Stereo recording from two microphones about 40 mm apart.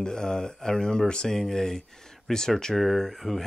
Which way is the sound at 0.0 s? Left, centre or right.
Centre.